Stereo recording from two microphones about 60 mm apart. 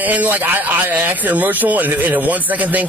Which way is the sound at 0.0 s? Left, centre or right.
Right.